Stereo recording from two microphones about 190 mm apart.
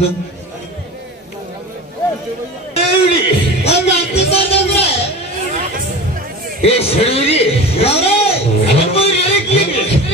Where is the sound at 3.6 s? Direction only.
35° left (ahead or behind).